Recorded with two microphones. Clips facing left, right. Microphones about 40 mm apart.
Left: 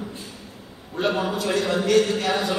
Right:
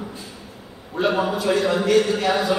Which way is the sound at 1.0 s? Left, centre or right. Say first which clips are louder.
Right 3 dB; centre.